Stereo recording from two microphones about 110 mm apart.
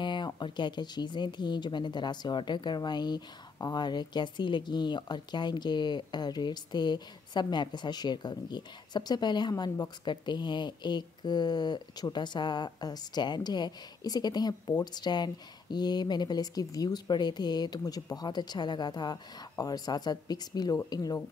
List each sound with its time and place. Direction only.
0.0 s speech: 45° left (ahead or behind)